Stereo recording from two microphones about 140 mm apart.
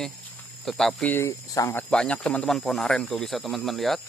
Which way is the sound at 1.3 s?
25° left (ahead or behind).